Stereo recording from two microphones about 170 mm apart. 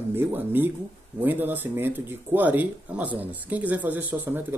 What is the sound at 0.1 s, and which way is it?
Speech, 10° right (ahead or behind).